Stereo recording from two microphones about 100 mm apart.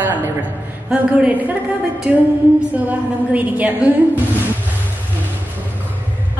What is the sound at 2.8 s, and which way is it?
A woman's voice, 15° right (ahead or behind).